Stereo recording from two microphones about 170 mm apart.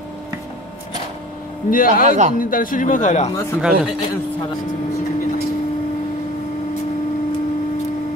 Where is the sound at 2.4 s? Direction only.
55° left (ahead or behind).